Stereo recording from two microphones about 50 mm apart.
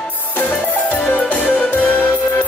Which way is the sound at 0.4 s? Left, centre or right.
Left.